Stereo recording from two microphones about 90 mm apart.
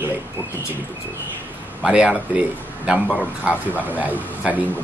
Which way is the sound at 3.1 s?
20° left (ahead or behind).